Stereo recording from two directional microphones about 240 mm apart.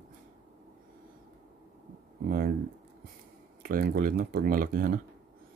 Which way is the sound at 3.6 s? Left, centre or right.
Right.